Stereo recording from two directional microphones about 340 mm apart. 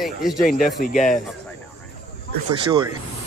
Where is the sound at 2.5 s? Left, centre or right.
Centre.